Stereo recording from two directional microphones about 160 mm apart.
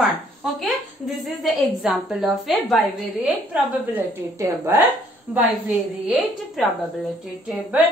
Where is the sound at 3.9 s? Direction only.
15° right (ahead or behind).